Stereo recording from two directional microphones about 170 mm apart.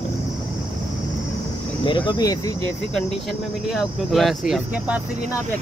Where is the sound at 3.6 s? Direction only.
Centre (ahead or behind).